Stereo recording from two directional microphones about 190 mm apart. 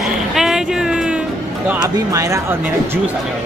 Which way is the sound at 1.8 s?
15° right (ahead or behind).